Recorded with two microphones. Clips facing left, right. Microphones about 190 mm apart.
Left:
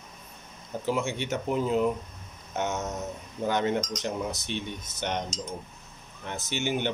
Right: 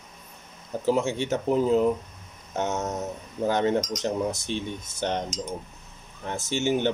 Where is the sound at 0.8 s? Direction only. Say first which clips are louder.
Right 5 dB; 40° right (ahead or behind).